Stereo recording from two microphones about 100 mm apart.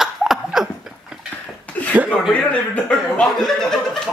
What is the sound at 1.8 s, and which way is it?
Chuckle, 15° left (ahead or behind).